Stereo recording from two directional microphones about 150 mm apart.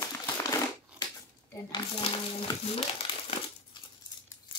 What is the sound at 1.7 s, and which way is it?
Speech, 35° left (ahead or behind).